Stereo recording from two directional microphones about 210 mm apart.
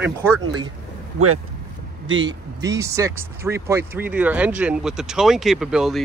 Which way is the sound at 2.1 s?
60° right (ahead or behind).